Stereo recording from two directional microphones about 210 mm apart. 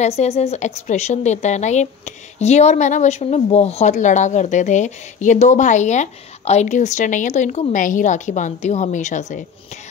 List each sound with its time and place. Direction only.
0.0 s a woman's voice: 30° left (ahead or behind)